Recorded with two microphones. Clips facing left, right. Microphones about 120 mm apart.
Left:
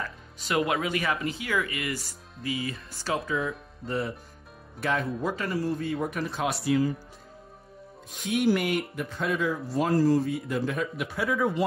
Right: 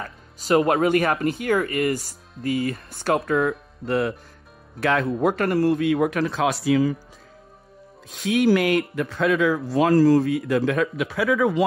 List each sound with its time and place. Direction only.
0.0 s music: 40° right (ahead or behind)
0.8 s speech: 55° right (ahead or behind)
2.0 s speech: centre (ahead or behind)
2.4 s speech: 55° right (ahead or behind)
3.3 s speech: 70° right (ahead or behind)
4.7 s speech: 90° right
8.2 s speech: 90° right; by 11.6 s 70° right (ahead or behind)